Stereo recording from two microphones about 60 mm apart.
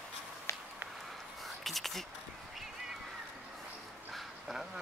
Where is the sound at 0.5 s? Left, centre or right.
Left.